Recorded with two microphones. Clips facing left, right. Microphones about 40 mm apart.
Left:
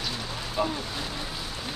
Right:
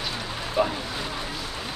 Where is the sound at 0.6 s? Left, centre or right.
Centre.